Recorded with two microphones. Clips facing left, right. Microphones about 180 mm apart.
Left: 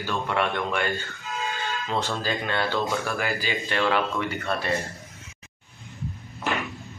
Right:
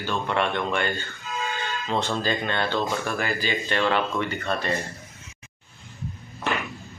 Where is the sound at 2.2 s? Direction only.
5° left (ahead or behind).